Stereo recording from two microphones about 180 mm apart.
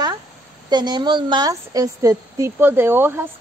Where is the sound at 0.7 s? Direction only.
25° right (ahead or behind).